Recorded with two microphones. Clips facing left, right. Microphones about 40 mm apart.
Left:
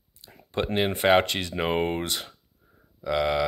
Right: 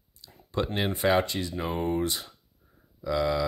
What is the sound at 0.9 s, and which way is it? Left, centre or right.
Speech, left.